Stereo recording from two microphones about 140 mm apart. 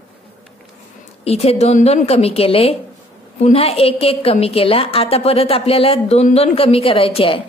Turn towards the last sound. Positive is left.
turn(degrees=40)  # may be behind; listen again after turning